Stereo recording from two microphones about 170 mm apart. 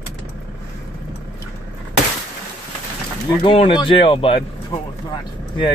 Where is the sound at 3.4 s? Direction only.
30° left (ahead or behind).